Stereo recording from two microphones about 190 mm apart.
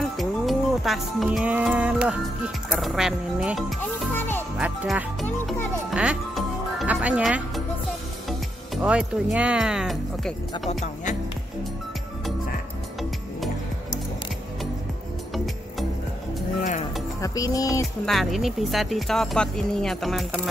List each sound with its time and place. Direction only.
0.2 s music: centre (ahead or behind)
4.6 s speech: 5° right (ahead or behind)
5.9 s music: 5° right (ahead or behind)
8.8 s speech: 5° right (ahead or behind)
17.2 s speech: 15° left (ahead or behind)
18.0 s speech: centre (ahead or behind)